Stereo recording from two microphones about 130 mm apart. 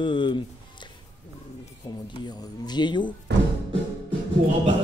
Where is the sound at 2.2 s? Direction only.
35° left (ahead or behind).